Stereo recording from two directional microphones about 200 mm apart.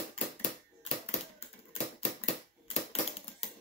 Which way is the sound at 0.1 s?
35° left (ahead or behind).